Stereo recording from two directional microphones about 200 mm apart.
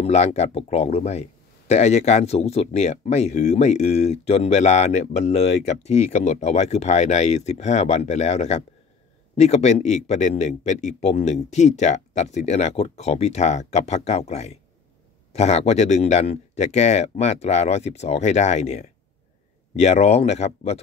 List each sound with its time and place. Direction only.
0.0 s speech: 35° left (ahead or behind)